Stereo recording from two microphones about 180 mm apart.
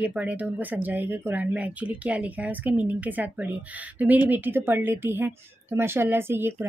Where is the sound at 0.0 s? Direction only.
10° right (ahead or behind).